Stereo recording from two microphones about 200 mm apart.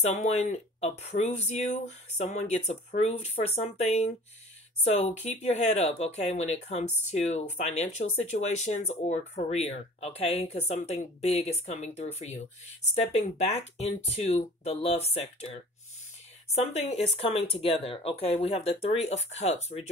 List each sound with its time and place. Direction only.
0.0 s speech: 35° left (ahead or behind)